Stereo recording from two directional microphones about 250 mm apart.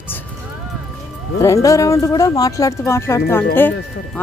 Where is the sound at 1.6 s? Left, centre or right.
Centre.